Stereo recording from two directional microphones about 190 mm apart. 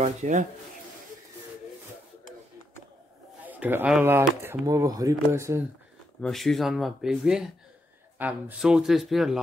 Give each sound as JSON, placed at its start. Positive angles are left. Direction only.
{"t": 0.0, "sound": "speech", "side_deg": -40}
{"t": 3.4, "sound": "a man's voice", "side_deg": -10}
{"t": 6.2, "sound": "speech", "side_deg": 0}